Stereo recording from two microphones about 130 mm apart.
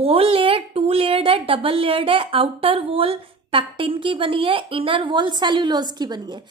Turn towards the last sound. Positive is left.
turn(degrees=-35)  # may be behind; listen again after turning